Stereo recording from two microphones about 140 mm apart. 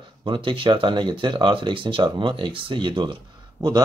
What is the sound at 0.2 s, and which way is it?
Speech, 35° right (ahead or behind).